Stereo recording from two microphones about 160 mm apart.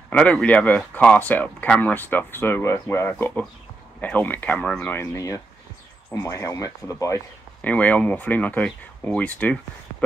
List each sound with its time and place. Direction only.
0.1 s speech: 5° left (ahead or behind)